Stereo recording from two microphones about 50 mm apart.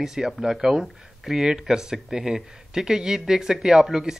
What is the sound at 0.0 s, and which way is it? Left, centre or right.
Speech, centre.